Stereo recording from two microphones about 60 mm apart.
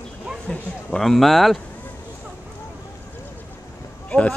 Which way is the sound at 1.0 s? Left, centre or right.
Centre.